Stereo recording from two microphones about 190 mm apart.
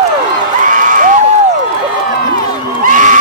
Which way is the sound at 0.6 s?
45° right (ahead or behind).